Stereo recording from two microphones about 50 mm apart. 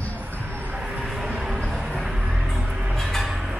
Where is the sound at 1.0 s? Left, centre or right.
Centre.